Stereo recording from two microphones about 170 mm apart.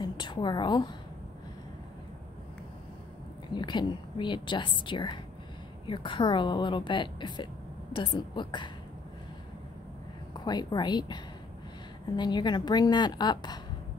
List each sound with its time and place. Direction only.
0.0 s a woman's voice: 25° left (ahead or behind)
3.5 s a woman's voice: 25° left (ahead or behind)
10.3 s a woman's voice: 25° left (ahead or behind)